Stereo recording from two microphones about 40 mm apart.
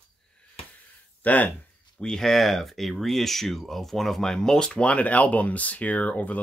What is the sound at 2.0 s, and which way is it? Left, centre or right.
Speech, centre.